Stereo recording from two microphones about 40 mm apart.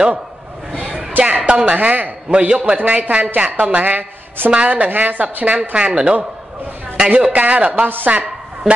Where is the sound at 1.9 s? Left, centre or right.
Right.